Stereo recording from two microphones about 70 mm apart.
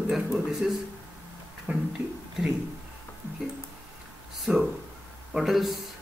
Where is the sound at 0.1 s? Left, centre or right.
Centre.